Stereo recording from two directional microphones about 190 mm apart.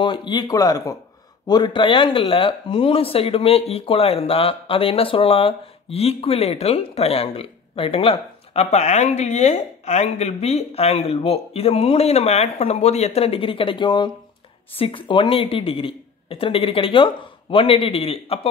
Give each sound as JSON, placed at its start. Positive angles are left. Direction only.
{"t": 0.0, "sound": "speech", "side_deg": 25}